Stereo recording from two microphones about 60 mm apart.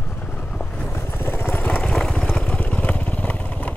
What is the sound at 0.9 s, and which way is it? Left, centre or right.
Vehicle, left.